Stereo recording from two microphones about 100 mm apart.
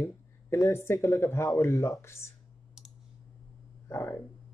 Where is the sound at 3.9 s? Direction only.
25° left (ahead or behind).